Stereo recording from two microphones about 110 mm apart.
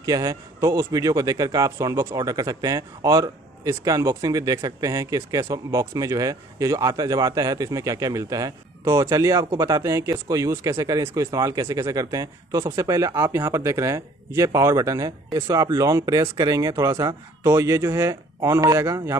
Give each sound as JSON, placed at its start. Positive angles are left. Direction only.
{"t": 0.0, "sound": "a man's voice", "side_deg": -30}